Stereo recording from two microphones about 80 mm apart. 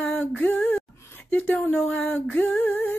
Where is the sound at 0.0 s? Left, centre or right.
Centre.